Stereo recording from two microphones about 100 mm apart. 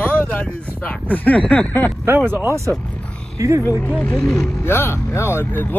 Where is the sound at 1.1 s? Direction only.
15° left (ahead or behind).